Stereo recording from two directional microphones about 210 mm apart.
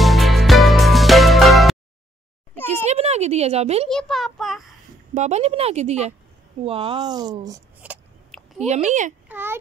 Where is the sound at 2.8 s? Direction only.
30° right (ahead or behind).